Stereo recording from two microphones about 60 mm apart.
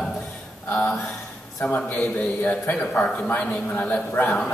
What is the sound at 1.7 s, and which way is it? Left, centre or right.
A man's voice, left.